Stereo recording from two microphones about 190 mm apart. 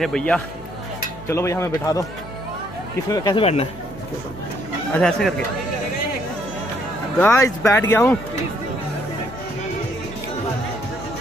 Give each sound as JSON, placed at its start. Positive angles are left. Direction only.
{"t": 0.0, "sound": "speech", "side_deg": 5}
{"t": 1.2, "sound": "speech", "side_deg": 15}
{"t": 3.1, "sound": "speech", "side_deg": 20}
{"t": 4.9, "sound": "speech", "side_deg": 5}
{"t": 7.2, "sound": "speech", "side_deg": 15}